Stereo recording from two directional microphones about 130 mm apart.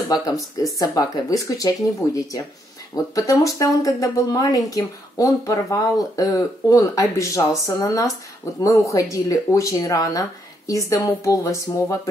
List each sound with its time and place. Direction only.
0.1 s speech: 30° left (ahead or behind)